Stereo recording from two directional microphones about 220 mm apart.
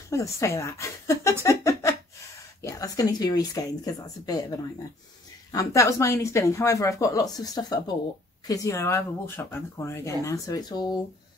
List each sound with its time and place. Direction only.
0.1 s speech: 15° left (ahead or behind)
1.4 s a sound: 15° left (ahead or behind)
2.6 s a woman's voice: 15° left (ahead or behind)